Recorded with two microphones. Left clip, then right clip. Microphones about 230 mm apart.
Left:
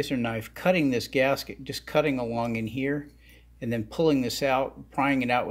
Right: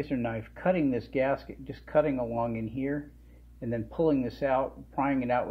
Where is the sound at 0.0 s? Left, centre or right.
Left.